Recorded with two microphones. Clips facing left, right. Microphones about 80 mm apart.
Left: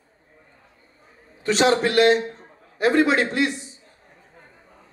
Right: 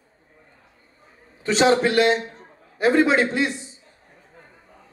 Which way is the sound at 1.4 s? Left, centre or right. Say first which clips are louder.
Right 1 dB; right.